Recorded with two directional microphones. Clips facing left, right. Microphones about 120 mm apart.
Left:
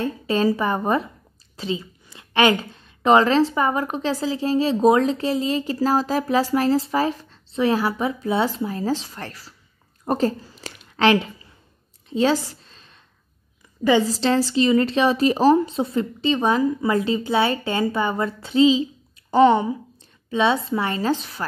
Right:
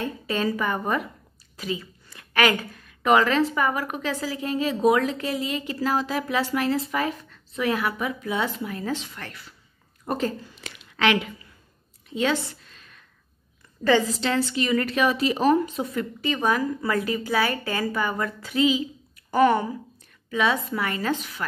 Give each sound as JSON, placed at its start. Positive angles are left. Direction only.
{"t": 0.0, "sound": "a woman's voice", "side_deg": 30}
{"t": 12.1, "sound": "a sound", "side_deg": 35}
{"t": 14.0, "sound": "a woman's voice", "side_deg": 35}